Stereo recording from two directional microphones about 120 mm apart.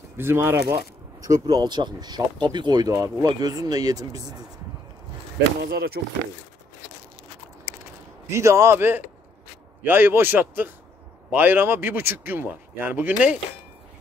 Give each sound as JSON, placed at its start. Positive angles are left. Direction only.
{"t": 0.2, "sound": "a man's voice", "side_deg": -20}
{"t": 0.7, "sound": "speech", "side_deg": -30}
{"t": 8.3, "sound": "a man's voice", "side_deg": -25}